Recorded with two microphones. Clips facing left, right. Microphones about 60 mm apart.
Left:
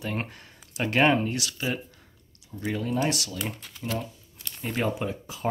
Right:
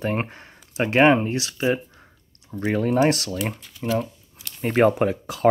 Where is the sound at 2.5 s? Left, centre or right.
Right.